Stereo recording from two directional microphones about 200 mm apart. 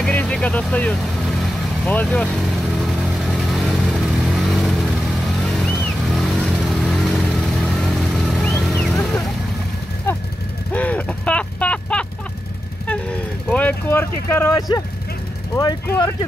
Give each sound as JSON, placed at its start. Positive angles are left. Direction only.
{"t": 0.0, "sound": "vehicle", "side_deg": 5}
{"t": 10.7, "sound": "a sound", "side_deg": 5}
{"t": 12.8, "sound": "vehicle", "side_deg": 5}
{"t": 16.0, "sound": "speech", "side_deg": 20}